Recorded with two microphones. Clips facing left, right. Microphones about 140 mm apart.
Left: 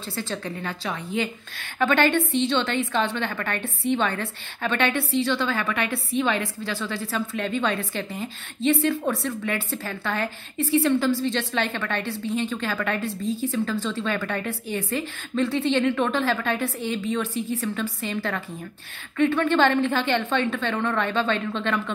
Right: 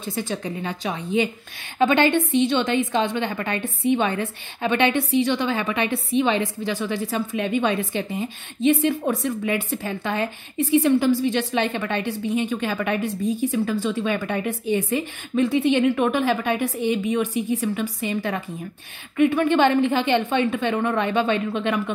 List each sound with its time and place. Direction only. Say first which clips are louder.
0.0 s a woman's voice: right 3 dB; 15° right (ahead or behind)